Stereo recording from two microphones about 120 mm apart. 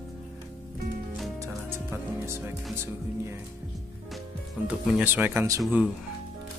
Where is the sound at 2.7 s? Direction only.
20° right (ahead or behind).